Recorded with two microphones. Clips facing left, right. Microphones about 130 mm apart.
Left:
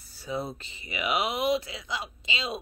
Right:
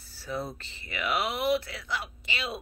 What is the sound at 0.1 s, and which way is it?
Speech, 15° left (ahead or behind).